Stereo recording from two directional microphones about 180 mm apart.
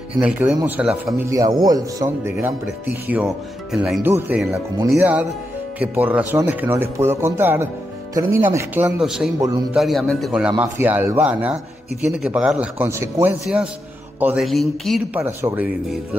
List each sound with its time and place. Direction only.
0.2 s speech: 10° right (ahead or behind)
1.3 s speech: 20° right (ahead or behind)
9.0 s speech: centre (ahead or behind)
15.1 s speech: 10° right (ahead or behind)